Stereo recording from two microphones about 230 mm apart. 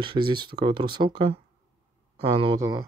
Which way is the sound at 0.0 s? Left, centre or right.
Right.